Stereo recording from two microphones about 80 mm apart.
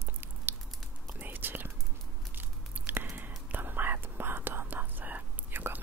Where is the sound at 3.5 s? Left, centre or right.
Right.